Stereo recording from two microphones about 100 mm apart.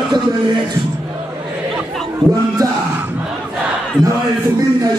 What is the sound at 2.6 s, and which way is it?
Speech, 35° right (ahead or behind).